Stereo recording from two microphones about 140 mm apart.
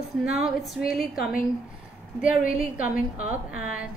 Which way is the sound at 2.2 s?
75° left (ahead or behind).